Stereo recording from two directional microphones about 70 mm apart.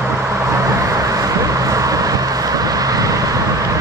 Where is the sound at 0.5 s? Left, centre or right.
Right.